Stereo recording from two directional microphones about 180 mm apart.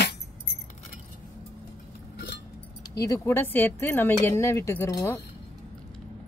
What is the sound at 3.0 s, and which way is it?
Speech, 15° left (ahead or behind).